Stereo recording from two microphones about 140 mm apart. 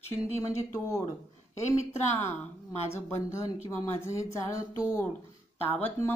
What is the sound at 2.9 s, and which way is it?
Speech, 20° left (ahead or behind).